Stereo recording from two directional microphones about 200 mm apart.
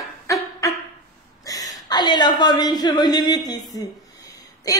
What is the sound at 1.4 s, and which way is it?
A woman's voice, 15° left (ahead or behind).